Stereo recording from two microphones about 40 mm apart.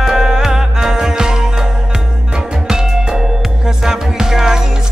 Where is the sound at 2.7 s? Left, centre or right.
Centre.